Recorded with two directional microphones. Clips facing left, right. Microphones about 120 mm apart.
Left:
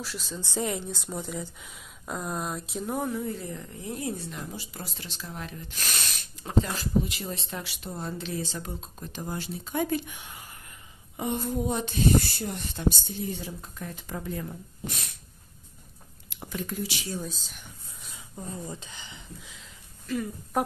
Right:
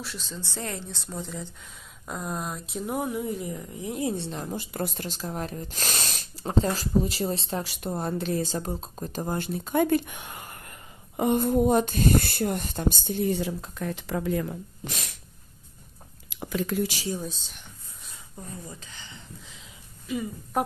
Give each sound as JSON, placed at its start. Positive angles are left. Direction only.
{"t": 0.0, "sound": "a woman's voice", "side_deg": 0}
{"t": 0.4, "sound": "a woman's voice", "side_deg": 15}
{"t": 4.5, "sound": "speech", "side_deg": -55}
{"t": 16.3, "sound": "a sound", "side_deg": -90}
{"t": 17.2, "sound": "a woman's voice", "side_deg": 0}
{"t": 18.4, "sound": "speech", "side_deg": 25}
{"t": 19.4, "sound": "a sound", "side_deg": 0}